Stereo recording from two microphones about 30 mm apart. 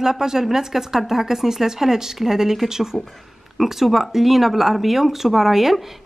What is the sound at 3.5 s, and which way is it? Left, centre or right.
Speech, centre.